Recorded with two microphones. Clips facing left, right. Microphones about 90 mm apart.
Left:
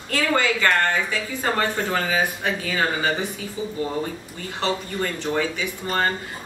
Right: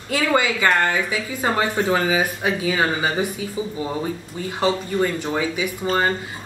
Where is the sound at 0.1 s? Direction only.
10° right (ahead or behind).